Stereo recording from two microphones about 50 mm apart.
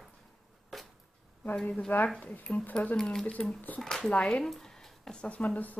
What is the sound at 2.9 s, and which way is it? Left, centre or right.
Speech, centre.